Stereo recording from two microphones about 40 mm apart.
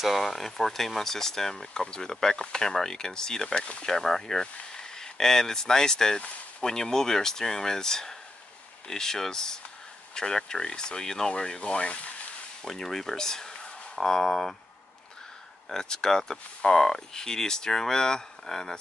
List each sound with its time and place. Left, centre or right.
0.0 s speech: centre
3.5 s speech: left
3.8 s speech: centre
12.6 s speech: centre
15.7 s speech: centre